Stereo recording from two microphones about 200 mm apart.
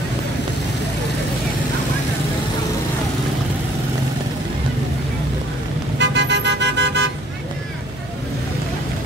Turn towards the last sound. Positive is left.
turn(degrees=-60)  # may be behind; listen again after turning